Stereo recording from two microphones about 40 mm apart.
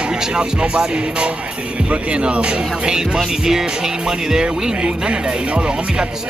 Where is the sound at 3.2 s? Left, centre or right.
Centre.